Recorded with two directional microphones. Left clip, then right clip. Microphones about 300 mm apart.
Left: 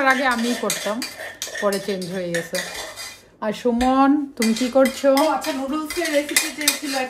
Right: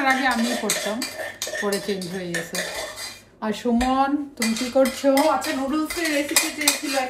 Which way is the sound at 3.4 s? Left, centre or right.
Centre.